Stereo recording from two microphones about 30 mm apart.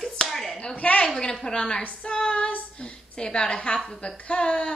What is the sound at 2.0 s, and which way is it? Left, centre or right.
Speech, left.